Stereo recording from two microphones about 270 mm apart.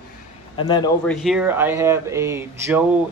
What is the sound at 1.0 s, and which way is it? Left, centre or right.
Speech, centre.